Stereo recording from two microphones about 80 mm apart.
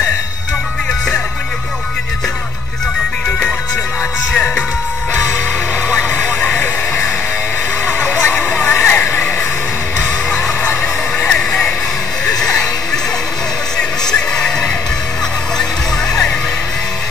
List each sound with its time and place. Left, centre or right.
5.9 s music: left
8.2 s vehicle: left
11.3 s music: centre